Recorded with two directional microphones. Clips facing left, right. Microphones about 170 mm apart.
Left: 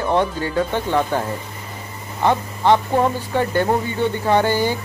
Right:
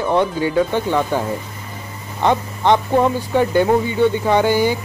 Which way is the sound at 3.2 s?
15° right (ahead or behind).